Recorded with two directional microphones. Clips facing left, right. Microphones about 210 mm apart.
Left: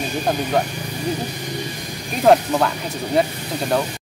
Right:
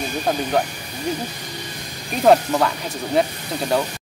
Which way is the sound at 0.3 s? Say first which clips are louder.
Even; centre (ahead or behind).